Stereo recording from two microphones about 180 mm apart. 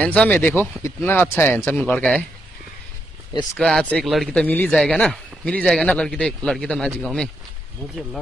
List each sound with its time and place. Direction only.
0.0 s speech: 5° left (ahead or behind)
3.5 s speech: 5° left (ahead or behind)